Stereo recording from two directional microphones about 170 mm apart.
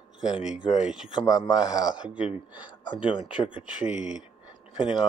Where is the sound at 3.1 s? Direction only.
30° left (ahead or behind).